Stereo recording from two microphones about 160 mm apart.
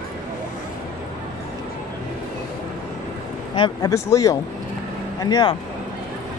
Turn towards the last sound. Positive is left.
turn(degrees=25)  # may be behind; listen again after turning